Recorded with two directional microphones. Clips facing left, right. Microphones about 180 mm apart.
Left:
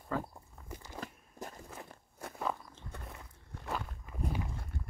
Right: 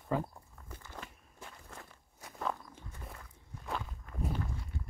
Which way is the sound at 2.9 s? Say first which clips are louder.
Left 3 dB; 65° left (ahead or behind).